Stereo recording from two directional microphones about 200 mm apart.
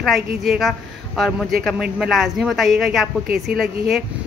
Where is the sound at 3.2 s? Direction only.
50° right (ahead or behind).